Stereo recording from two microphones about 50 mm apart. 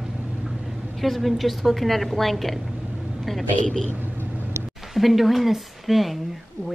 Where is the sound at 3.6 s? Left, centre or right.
Centre.